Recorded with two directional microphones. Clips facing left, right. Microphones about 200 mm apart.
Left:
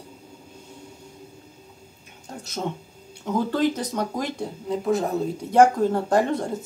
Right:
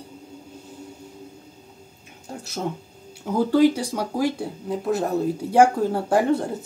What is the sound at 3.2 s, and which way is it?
Speech, 10° right (ahead or behind).